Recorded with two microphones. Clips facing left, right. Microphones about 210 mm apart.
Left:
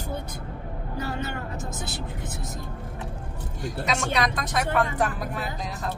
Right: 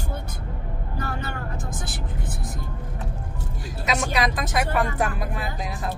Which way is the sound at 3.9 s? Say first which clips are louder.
Right 2 dB; 5° right (ahead or behind).